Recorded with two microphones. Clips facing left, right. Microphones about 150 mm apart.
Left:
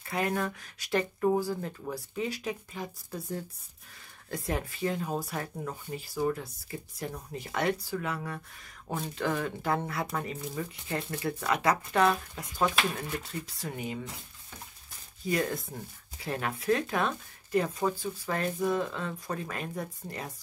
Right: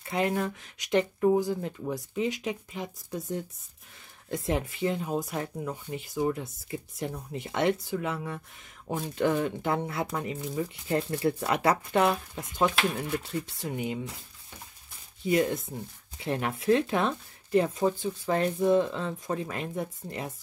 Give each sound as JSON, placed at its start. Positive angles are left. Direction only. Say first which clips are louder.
{"t": 0.0, "sound": "speech", "louder": "right 3 dB", "side_deg": -25}
{"t": 15.2, "sound": "speech", "louder": "right 5 dB", "side_deg": -20}